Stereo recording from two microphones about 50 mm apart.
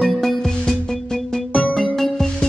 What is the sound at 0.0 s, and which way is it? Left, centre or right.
Music, centre.